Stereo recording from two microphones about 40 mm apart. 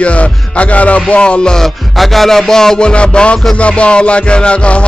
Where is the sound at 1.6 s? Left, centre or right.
Centre.